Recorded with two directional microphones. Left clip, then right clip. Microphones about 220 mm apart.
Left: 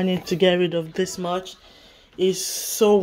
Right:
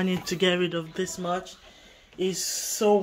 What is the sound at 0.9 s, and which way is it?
Speech, 30° left (ahead or behind).